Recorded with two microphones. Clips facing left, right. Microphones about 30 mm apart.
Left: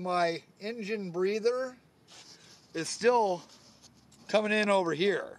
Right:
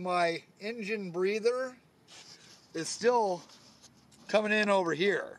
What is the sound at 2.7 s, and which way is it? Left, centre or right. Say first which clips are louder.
Speech: left 2 dB; left.